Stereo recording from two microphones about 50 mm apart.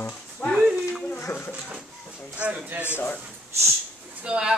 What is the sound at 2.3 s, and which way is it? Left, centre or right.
Speech, right.